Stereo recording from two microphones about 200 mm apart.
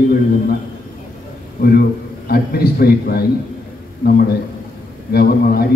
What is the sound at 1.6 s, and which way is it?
A man's voice, 50° left (ahead or behind).